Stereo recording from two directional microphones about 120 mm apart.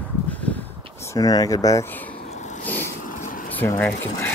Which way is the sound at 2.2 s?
80° left.